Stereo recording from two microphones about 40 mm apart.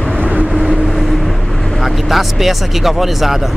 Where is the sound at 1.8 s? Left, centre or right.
Centre.